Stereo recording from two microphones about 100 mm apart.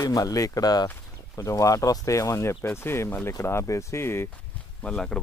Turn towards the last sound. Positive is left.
turn(degrees=10)  # may be behind; listen again after turning